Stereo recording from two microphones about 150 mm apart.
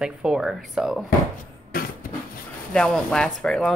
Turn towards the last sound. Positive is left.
turn(degrees=5)  # may be behind; listen again after turning